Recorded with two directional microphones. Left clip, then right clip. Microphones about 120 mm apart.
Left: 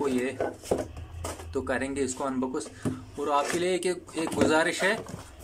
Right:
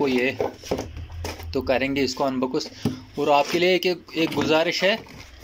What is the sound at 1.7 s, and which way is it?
Speech, 15° right (ahead or behind).